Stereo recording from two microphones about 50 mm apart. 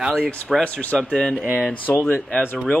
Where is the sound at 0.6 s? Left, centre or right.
Left.